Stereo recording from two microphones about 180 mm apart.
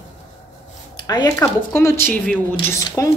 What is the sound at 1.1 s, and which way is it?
A woman's voice, 20° left (ahead or behind).